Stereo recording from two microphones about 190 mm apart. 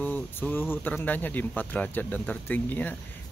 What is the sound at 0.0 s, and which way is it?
Speech, 10° left (ahead or behind).